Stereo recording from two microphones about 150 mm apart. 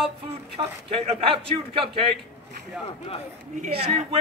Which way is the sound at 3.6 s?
45° right (ahead or behind).